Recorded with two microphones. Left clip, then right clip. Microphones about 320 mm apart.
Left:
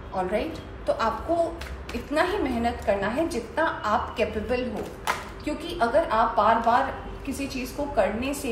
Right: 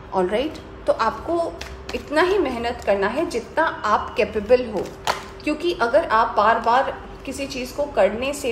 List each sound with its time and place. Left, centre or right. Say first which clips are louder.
0.1 s a woman's voice: right 6 dB; right
2.1 s a woman's voice: right 6 dB; right